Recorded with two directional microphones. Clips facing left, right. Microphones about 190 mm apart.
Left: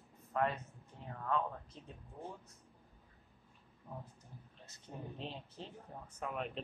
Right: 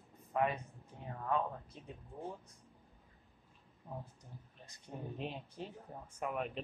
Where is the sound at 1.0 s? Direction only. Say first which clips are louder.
Right 2 dB; 15° right (ahead or behind).